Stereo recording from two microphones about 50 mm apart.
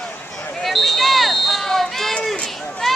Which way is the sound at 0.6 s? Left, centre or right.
Centre.